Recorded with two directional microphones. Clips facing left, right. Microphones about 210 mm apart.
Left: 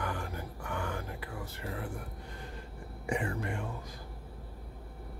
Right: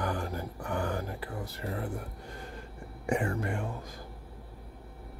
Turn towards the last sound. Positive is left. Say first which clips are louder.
# right 4 dB
turn(degrees=-45)  # may be behind; listen again after turning